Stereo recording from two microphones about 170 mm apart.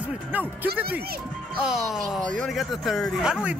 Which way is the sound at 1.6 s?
5° right (ahead or behind).